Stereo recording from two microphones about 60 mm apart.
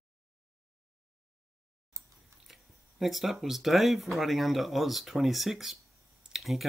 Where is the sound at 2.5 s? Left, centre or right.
Centre.